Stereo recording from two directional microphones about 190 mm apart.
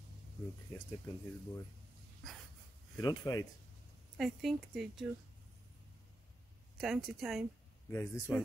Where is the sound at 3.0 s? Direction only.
20° left (ahead or behind).